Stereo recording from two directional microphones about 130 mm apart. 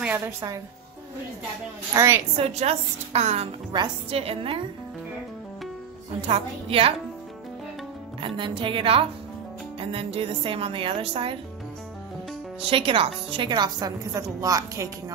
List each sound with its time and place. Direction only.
2.0 s a woman's voice: 20° right (ahead or behind)
2.3 s speech: 50° right (ahead or behind)
6.2 s speech: 50° right (ahead or behind)
8.4 s speech: 40° right (ahead or behind)
12.6 s a woman's voice: 45° right (ahead or behind); by 15.1 s 25° right (ahead or behind)